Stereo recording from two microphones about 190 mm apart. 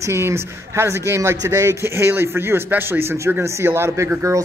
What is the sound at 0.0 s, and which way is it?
Speech, 15° right (ahead or behind).